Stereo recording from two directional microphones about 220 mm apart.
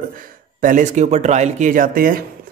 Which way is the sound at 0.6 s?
35° right (ahead or behind).